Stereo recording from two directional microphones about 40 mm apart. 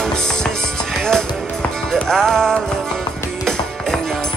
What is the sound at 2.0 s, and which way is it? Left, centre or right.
Music, centre.